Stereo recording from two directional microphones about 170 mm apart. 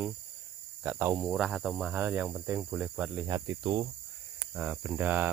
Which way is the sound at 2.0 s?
10° right (ahead or behind).